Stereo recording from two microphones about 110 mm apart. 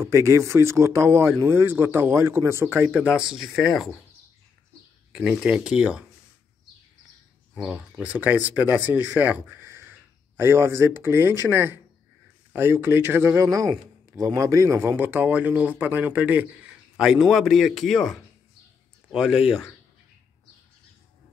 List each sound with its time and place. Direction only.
0.0 s speech: 25° right (ahead or behind)
3.1 s a man's voice: 5° right (ahead or behind)
5.1 s speech: 5° right (ahead or behind)
7.6 s speech: 10° right (ahead or behind)
16.9 s a man's voice: 5° right (ahead or behind)